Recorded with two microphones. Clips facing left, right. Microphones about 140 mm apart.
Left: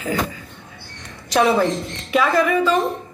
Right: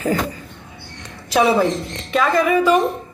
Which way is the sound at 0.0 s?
40° right (ahead or behind).